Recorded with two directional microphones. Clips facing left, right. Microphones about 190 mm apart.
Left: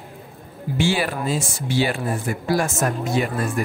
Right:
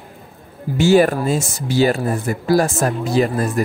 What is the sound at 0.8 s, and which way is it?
A man's voice, 45° right (ahead or behind).